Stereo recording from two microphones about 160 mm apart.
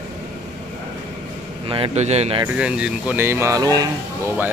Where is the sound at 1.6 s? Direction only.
35° right (ahead or behind).